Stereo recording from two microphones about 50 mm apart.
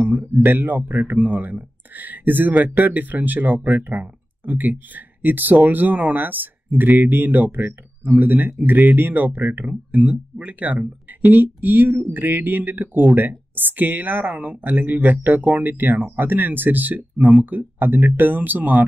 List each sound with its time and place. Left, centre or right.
0.4 s speech: right